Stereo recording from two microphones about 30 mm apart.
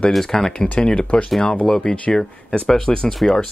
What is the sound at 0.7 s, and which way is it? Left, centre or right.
Speech, left.